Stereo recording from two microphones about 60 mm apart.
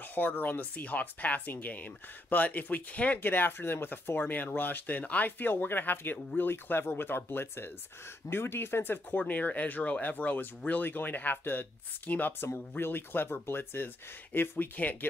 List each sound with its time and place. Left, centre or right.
0.1 s speech: left
9.1 s speech: left